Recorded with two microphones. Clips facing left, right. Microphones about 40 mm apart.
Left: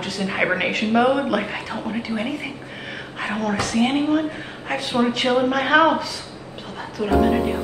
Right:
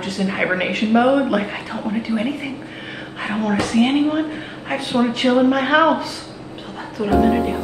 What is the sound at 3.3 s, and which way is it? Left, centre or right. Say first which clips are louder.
Speech: right 4 dB; right.